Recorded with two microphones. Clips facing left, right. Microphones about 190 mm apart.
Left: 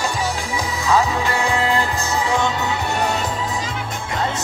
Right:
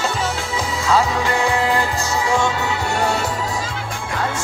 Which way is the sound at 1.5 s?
15° right (ahead or behind).